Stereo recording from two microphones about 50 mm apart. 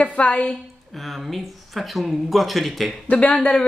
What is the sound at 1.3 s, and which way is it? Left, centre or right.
Speech, centre.